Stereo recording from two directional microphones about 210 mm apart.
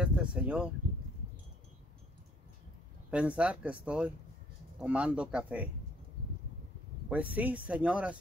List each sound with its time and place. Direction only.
0.0 s a sound: 5° right (ahead or behind)
3.1 s speech: 5° right (ahead or behind)
7.1 s speech: 5° right (ahead or behind)